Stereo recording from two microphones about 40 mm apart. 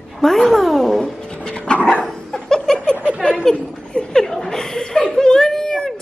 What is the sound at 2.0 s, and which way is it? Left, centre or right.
Laughter, centre.